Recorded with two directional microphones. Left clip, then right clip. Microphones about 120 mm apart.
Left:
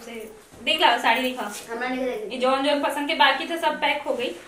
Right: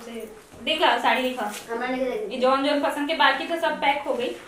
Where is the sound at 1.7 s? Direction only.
15° left (ahead or behind).